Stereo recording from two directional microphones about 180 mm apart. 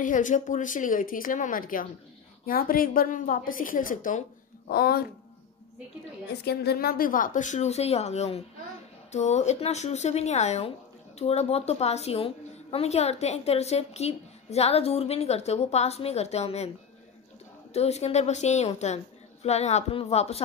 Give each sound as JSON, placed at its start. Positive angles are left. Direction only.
{"t": 0.0, "sound": "a woman's voice", "side_deg": 45}
{"t": 4.6, "sound": "speech", "side_deg": 55}
{"t": 6.4, "sound": "a woman's voice", "side_deg": 65}
{"t": 17.7, "sound": "a woman's voice", "side_deg": 35}